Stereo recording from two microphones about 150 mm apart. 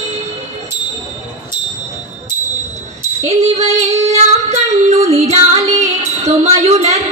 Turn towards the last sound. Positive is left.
turn(degrees=-45)  # may be behind; listen again after turning